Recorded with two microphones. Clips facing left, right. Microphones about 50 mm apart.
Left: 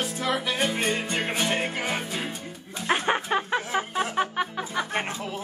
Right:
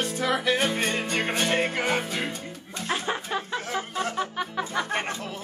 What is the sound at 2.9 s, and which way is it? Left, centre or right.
Music, left.